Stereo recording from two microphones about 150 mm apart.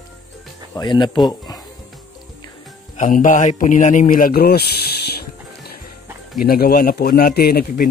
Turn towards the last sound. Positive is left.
turn(degrees=90)